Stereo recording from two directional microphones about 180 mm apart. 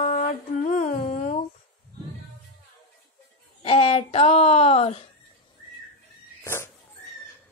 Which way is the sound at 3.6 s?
35° left (ahead or behind).